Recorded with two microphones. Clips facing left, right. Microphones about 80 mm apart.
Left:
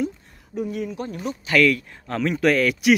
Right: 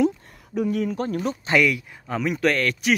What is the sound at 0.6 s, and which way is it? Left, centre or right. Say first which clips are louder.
Speech: right 4 dB; right.